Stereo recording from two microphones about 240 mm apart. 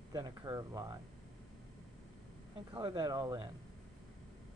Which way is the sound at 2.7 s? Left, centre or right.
Centre.